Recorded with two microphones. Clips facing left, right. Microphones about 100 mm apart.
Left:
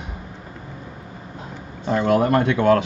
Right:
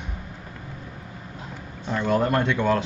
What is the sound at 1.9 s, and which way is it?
Speech, 65° left (ahead or behind).